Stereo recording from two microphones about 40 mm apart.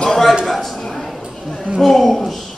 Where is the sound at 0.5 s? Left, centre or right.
Centre.